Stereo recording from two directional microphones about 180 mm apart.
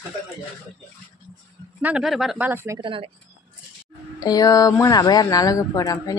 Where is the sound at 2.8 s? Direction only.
30° right (ahead or behind).